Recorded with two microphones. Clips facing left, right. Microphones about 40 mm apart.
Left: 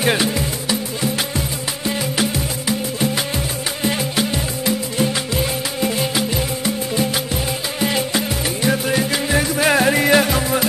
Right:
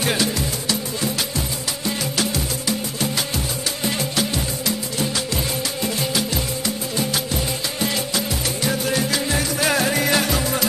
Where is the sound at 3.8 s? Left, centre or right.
Centre.